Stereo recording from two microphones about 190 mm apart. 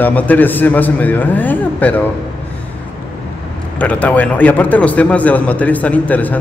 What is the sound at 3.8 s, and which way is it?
A man's voice, 5° left (ahead or behind).